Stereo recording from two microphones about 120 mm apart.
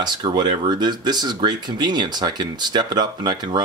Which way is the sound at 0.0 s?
35° right (ahead or behind).